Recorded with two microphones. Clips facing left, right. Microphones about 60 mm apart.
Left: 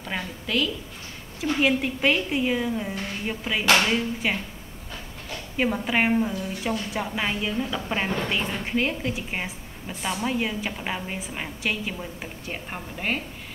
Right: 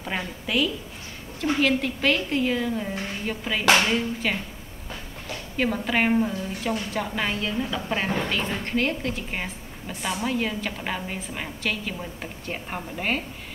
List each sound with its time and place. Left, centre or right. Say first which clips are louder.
0.0 s a woman's voice: right 1 dB; centre
1.4 s a woman's voice: even; centre
4.2 s a woman's voice: left 1 dB; centre
5.6 s a woman's voice: even; centre